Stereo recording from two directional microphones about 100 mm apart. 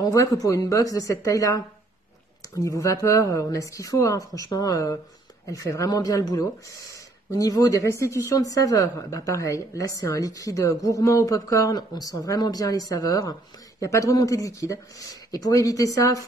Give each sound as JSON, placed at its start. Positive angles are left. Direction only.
{"t": 0.0, "sound": "speech", "side_deg": 35}